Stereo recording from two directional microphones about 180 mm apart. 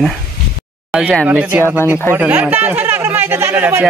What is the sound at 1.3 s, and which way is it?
Speech, 10° right (ahead or behind).